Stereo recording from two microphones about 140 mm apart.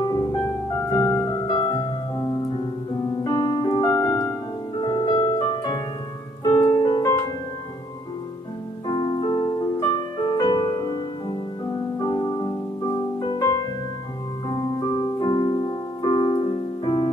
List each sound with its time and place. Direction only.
0.0 s music: 30° left (ahead or behind)
1.5 s music: 35° left (ahead or behind)
3.3 s piano: 35° left (ahead or behind)
4.9 s music: 30° left (ahead or behind)
6.4 s music: 20° left (ahead or behind)
8.8 s music: 30° left (ahead or behind)